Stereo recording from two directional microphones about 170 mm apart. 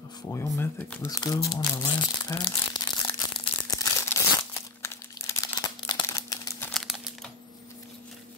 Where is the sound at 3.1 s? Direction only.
25° left (ahead or behind).